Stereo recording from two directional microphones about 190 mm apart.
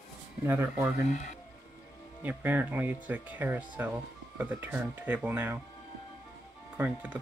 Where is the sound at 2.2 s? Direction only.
10° right (ahead or behind).